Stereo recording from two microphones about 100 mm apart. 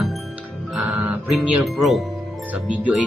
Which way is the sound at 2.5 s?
15° right (ahead or behind).